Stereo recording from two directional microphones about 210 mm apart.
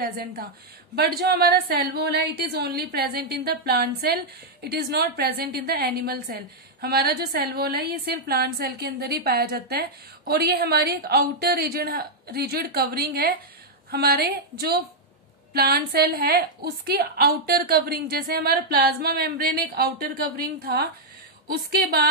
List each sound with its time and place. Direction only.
0.9 s a woman's voice: 50° right (ahead or behind)